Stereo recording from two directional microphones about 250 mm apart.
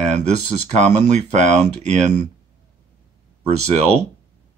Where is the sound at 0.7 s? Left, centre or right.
Right.